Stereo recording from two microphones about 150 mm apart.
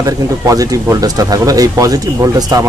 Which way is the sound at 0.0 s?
20° right (ahead or behind).